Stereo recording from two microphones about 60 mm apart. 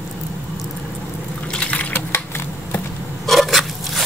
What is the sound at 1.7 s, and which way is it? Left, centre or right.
Typing, left.